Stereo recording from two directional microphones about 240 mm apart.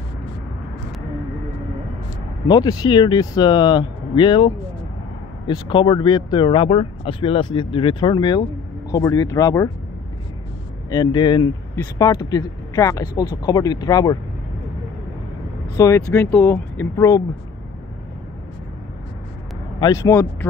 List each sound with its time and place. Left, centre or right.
2.4 s speech: centre
10.9 s speech: centre
15.7 s speech: centre
19.8 s speech: centre